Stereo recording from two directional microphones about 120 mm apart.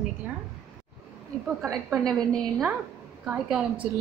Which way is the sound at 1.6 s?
20° right (ahead or behind).